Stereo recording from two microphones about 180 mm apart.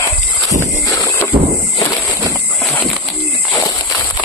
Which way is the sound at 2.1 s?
15° right (ahead or behind).